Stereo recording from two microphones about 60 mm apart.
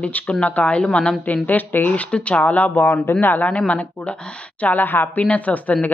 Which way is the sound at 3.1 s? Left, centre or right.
Left.